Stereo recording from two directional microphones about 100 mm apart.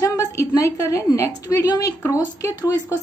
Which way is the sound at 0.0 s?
35° left (ahead or behind).